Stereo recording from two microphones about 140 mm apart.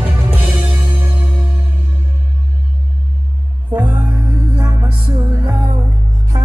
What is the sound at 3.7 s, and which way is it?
Music, 10° right (ahead or behind).